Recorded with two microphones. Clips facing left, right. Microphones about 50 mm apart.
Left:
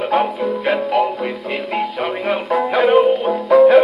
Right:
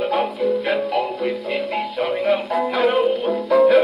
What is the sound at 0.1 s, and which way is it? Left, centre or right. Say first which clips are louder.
Music: left 2 dB; centre.